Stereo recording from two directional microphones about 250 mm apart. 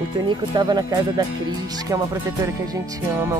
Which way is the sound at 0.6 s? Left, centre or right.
Centre.